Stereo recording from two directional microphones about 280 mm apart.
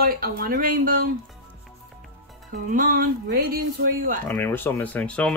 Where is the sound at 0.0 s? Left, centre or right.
Right.